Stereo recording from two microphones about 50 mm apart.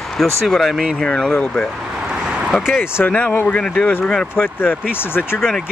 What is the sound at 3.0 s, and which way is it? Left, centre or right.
Speech, left.